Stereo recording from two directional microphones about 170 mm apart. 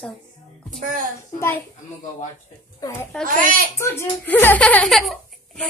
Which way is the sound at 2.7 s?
20° left (ahead or behind).